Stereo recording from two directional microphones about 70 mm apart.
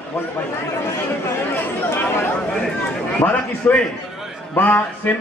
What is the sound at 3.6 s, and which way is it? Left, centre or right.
A man's voice, left.